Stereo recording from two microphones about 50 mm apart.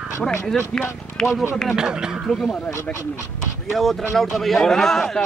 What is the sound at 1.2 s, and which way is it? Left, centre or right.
Speech, centre.